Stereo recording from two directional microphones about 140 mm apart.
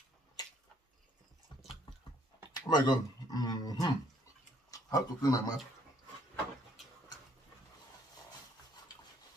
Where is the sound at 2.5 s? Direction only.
30° left (ahead or behind).